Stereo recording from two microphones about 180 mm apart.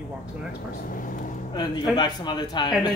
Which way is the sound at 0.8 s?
50° left (ahead or behind).